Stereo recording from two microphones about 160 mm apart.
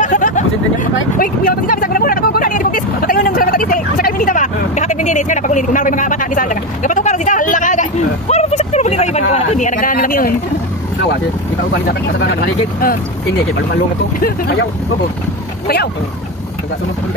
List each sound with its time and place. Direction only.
0.0 s a sound: 50° left (ahead or behind)
1.1 s vehicle: 60° left (ahead or behind)
11.9 s speech: 90° left
14.2 s speech: 90° left